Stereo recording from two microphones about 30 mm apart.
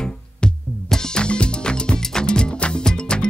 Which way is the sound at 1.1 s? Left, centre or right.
Left.